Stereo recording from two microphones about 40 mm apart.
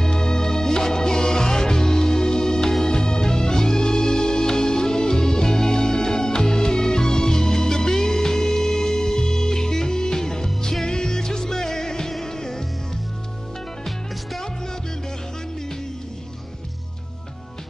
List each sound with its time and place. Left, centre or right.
0.0 s music: centre